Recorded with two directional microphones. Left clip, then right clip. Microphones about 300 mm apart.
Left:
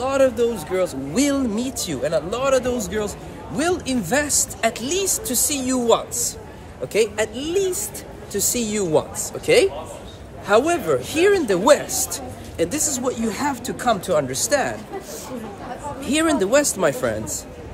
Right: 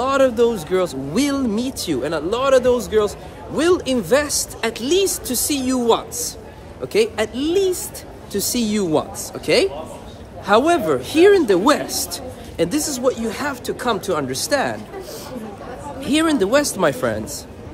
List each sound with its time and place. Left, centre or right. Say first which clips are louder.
0.0 s a woman's voice: right 2 dB; centre
16.0 s a woman's voice: right 2 dB; centre